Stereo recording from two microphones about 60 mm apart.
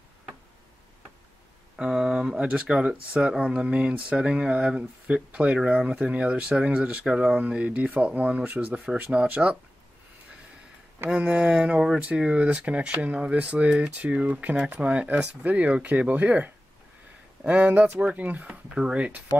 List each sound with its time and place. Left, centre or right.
1.8 s speech: centre; by 8.8 s right
9.1 s speech: centre
11.1 s speech: centre